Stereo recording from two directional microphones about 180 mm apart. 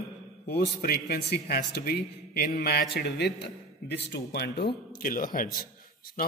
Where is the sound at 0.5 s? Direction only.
60° left (ahead or behind).